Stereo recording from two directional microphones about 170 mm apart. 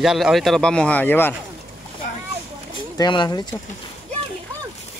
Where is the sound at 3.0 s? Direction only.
25° left (ahead or behind).